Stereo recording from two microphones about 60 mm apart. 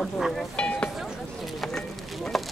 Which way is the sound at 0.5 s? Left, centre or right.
Centre.